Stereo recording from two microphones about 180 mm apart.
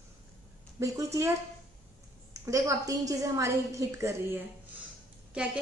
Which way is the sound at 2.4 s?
15° right (ahead or behind).